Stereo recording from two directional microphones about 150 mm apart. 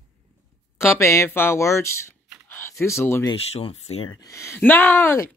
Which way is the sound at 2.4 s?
15° left (ahead or behind).